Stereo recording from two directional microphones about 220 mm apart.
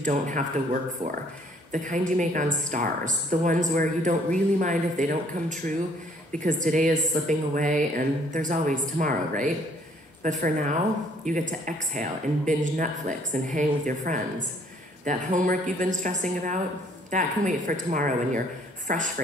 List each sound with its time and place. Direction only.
0.0 s a woman's voice: 35° right (ahead or behind)
1.7 s a woman's voice: 35° right (ahead or behind)